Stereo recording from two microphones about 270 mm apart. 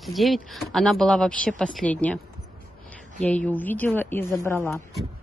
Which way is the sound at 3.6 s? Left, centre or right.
Centre.